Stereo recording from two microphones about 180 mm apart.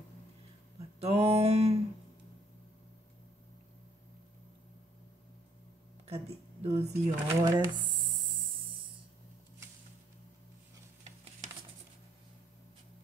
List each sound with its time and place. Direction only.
1.0 s music: 35° right (ahead or behind)
6.0 s a sound: 35° right (ahead or behind)
7.2 s speech: 20° right (ahead or behind)